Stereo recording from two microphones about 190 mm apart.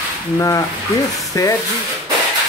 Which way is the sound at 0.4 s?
15° left (ahead or behind).